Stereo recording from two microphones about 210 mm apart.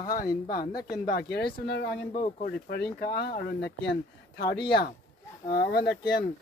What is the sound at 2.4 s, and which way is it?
Speech, 45° left (ahead or behind).